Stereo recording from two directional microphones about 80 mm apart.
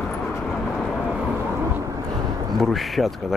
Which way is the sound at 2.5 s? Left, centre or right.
Centre.